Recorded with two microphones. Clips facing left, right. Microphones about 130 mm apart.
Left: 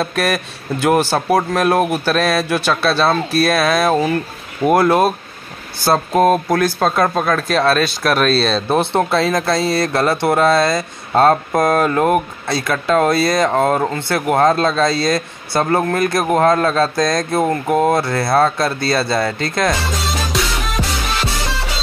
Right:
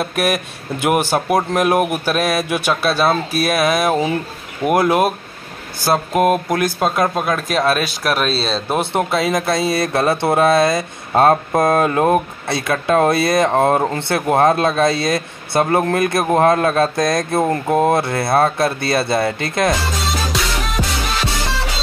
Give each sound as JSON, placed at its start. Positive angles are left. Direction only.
{"t": 0.0, "sound": "speech", "side_deg": -15}
{"t": 6.1, "sound": "speech", "side_deg": 30}
{"t": 6.6, "sound": "speech", "side_deg": -10}
{"t": 20.1, "sound": "music", "side_deg": 0}